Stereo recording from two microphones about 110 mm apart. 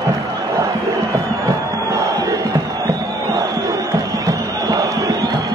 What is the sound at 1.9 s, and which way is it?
Crowd, 30° right (ahead or behind).